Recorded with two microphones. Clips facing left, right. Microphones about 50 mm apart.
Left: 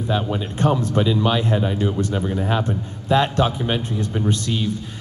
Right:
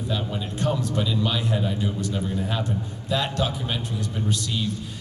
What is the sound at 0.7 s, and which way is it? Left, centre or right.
A man's voice, left.